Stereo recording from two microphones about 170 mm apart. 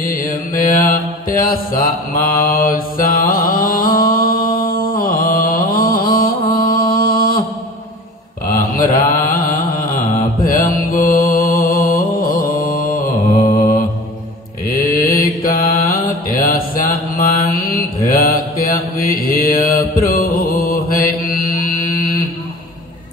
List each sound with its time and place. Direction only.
0.0 s mantra: 55° left (ahead or behind)
8.5 s mantra: 55° left (ahead or behind)
14.7 s mantra: 55° left (ahead or behind)